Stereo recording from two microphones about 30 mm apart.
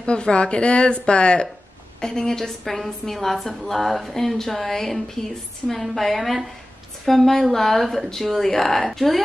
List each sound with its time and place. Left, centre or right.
0.0 s speech: left
2.0 s a woman's voice: left
2.6 s a woman's voice: centre
4.1 s a woman's voice: centre